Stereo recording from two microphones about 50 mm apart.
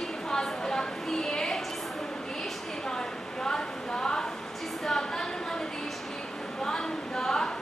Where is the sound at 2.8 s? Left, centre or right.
Centre.